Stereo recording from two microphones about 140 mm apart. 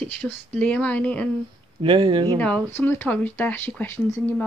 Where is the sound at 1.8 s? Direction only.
35° right (ahead or behind).